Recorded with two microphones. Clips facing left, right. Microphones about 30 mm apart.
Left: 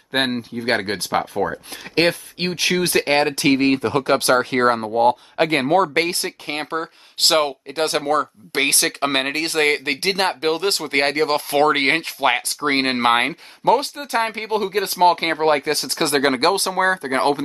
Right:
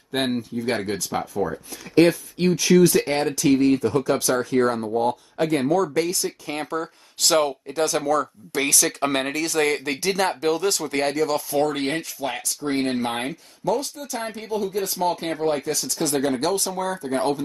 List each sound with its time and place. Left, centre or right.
0.1 s speech: left
0.7 s speech: left
5.5 s speech: left